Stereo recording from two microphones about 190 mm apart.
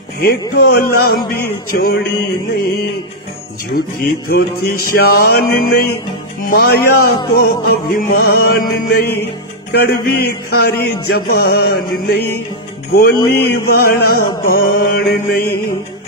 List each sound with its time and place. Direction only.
0.2 s speech: 50° left (ahead or behind)
3.7 s a man's voice: 50° left (ahead or behind)
12.9 s a man's voice: 55° left (ahead or behind)